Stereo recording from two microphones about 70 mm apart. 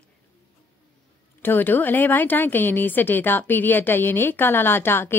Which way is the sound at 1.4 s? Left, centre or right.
Left.